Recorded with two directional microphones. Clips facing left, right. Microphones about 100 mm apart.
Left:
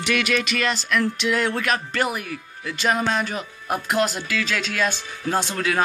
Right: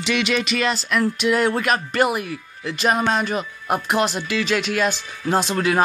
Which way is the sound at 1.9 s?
15° right (ahead or behind).